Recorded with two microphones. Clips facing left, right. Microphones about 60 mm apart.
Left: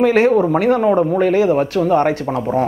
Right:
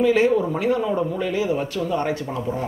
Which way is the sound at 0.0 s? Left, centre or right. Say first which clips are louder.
Left 5 dB; left.